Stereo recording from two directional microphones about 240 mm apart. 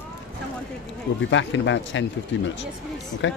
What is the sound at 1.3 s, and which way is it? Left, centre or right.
Speech, left.